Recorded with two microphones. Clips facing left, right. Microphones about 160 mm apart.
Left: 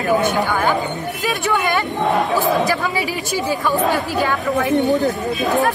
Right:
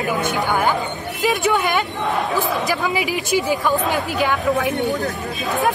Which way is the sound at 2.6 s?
15° right (ahead or behind).